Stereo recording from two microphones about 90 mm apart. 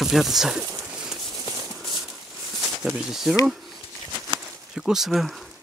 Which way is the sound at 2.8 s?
5° right (ahead or behind).